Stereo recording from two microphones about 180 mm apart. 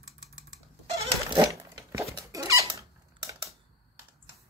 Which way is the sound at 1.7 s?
20° right (ahead or behind).